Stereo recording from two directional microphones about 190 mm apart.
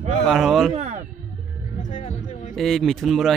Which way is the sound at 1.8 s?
40° left (ahead or behind).